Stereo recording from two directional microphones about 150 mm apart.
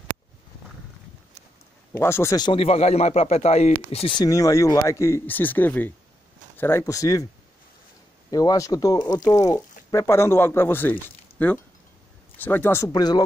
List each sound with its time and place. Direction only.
1.9 s speech: 15° left (ahead or behind)
2.3 s speech: 35° left (ahead or behind)
4.2 s speech: 20° left (ahead or behind)
8.3 s speech: 25° left (ahead or behind)
12.9 s speech: 25° left (ahead or behind)